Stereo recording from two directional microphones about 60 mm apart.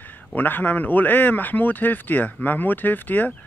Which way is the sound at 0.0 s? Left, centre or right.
Left.